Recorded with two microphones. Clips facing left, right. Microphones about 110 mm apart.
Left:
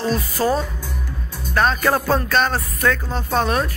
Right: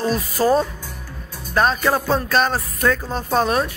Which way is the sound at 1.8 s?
5° right (ahead or behind).